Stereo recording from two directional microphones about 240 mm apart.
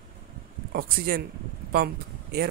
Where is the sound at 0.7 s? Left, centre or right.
Right.